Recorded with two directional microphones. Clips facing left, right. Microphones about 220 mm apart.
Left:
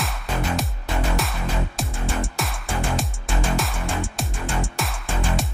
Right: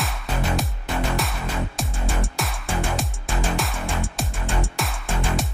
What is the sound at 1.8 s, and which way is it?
Music, centre (ahead or behind).